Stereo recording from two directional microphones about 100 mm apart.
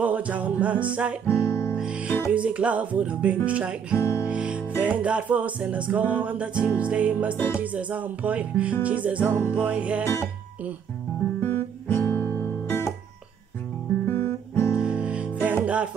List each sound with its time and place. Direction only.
0.0 s music: 15° right (ahead or behind)
1.2 s music: 25° left (ahead or behind)
1.8 s music: 10° right (ahead or behind)
3.9 s music: 25° left (ahead or behind)
4.3 s music: 10° right (ahead or behind)
9.2 s music: 25° left (ahead or behind)
9.7 s music: 15° right (ahead or behind)
10.0 s music: 25° left (ahead or behind)
11.3 s guitar: 25° left (ahead or behind)
14.0 s guitar: 25° left (ahead or behind)
14.8 s music: 10° right (ahead or behind)